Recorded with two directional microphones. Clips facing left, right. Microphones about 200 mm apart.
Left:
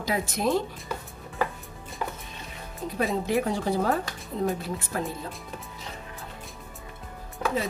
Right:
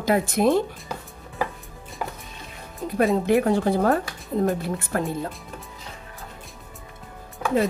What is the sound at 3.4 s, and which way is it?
A woman's voice, 55° right (ahead or behind).